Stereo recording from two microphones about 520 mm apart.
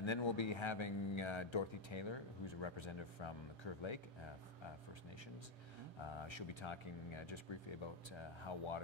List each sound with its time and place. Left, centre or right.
0.0 s a man's voice: left
6.0 s a man's voice: left